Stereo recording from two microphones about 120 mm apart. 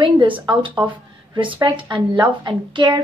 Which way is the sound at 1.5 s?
35° right (ahead or behind).